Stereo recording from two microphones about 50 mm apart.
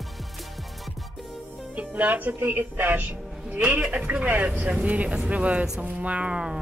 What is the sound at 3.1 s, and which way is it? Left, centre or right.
A woman's voice, right.